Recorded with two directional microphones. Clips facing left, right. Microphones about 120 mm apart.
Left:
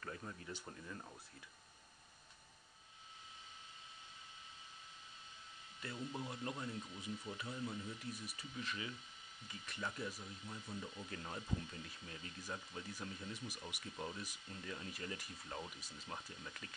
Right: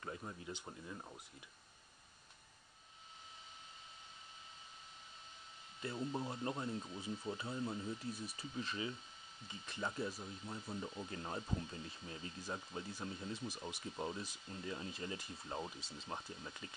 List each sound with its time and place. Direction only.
0.0 s speech: 20° right (ahead or behind)
5.8 s speech: 30° right (ahead or behind)